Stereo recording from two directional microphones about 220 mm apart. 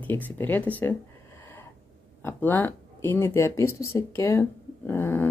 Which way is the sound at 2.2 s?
10° left (ahead or behind).